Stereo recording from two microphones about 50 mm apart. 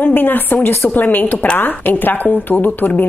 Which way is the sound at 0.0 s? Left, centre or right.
Left.